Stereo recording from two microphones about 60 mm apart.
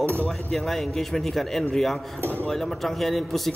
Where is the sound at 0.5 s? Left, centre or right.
Centre.